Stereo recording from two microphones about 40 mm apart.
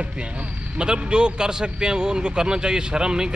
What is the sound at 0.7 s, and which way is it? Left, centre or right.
Speech, right.